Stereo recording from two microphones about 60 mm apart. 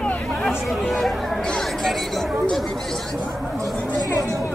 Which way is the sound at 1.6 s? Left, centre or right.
Centre.